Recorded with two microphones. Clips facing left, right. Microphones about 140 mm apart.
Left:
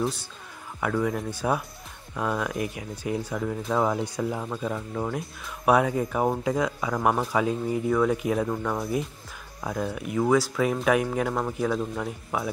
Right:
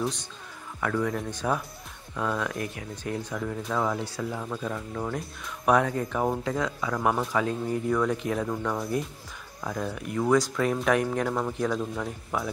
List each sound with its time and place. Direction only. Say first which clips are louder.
0.0 s speech: left 2 dB; 5° left (ahead or behind)
3.7 s speech: left 4 dB; 25° left (ahead or behind)
4.6 s speech: left 2 dB; 5° left (ahead or behind)